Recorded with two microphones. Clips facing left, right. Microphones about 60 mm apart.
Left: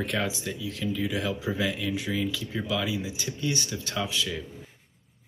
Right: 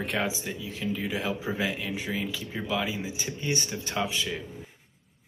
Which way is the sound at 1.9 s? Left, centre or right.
Right.